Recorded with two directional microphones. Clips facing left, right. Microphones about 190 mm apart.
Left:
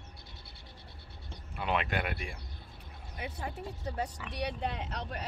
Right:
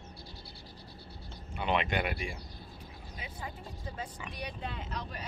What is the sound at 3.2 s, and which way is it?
Vehicle, 60° left (ahead or behind).